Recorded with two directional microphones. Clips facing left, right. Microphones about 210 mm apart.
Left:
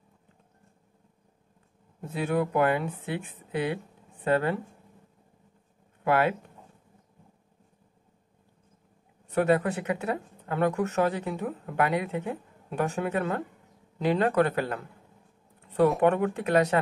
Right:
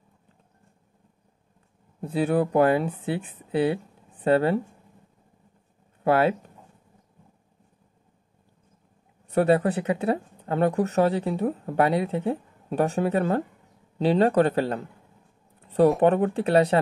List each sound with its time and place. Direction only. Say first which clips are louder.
2.0 s speech: right 5 dB; 35° right (ahead or behind)
6.0 s speech: right 4 dB; 35° right (ahead or behind)
9.3 s speech: right 3 dB; 35° right (ahead or behind)
16.0 s speech: right 3 dB; 35° right (ahead or behind)